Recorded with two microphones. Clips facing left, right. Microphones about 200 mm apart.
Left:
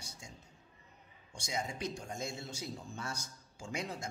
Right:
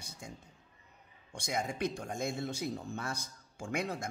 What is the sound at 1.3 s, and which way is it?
A man's voice, 55° right (ahead or behind).